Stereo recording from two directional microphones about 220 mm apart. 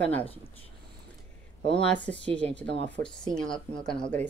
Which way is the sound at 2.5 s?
55° right (ahead or behind).